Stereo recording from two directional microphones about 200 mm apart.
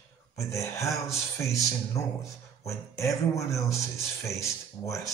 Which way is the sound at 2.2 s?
15° left (ahead or behind).